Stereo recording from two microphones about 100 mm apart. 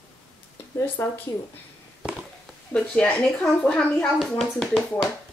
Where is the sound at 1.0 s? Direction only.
30° left (ahead or behind).